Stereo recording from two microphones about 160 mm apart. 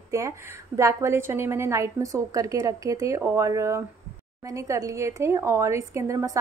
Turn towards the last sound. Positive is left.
turn(degrees=-20)  # may be behind; listen again after turning